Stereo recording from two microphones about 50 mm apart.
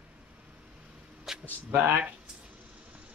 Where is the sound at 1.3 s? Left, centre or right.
Centre.